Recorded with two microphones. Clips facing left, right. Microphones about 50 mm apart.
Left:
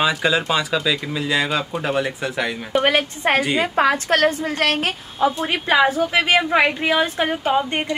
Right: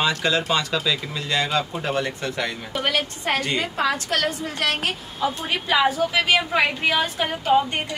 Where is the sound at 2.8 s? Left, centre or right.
Left.